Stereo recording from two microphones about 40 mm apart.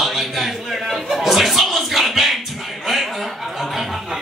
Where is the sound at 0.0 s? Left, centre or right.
Centre.